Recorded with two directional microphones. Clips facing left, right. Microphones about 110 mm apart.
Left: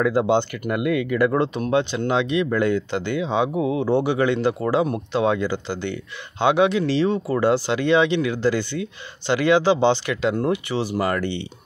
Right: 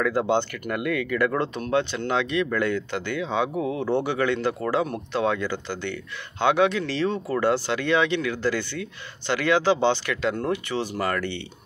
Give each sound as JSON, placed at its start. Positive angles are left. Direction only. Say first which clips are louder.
{"t": 0.0, "sound": "speech", "louder": "left 4 dB", "side_deg": 15}